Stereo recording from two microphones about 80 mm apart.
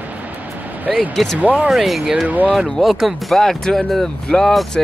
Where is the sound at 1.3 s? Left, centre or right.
Centre.